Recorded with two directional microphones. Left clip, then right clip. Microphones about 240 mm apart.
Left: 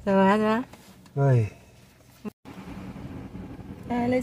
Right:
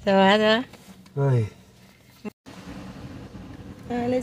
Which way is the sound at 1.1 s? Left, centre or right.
Centre.